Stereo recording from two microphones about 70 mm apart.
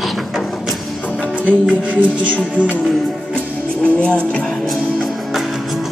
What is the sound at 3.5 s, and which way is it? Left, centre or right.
Music, centre.